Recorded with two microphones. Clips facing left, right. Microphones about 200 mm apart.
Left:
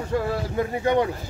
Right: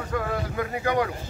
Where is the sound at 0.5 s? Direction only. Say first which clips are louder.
Left 4 dB; 25° left (ahead or behind).